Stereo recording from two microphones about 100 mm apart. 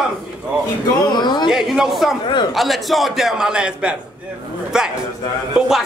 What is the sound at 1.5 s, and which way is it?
A man's voice, 5° right (ahead or behind).